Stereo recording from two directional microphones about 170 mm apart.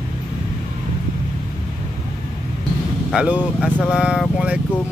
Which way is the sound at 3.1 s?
5° right (ahead or behind).